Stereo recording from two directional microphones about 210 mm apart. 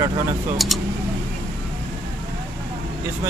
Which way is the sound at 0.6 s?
Centre (ahead or behind).